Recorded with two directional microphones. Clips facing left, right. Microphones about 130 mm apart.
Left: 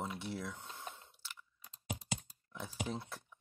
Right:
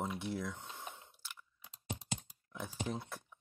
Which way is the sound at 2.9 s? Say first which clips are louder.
Right 1 dB; 20° right (ahead or behind).